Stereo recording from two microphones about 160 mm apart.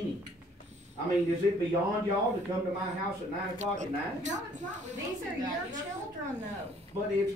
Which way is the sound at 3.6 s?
50° right (ahead or behind).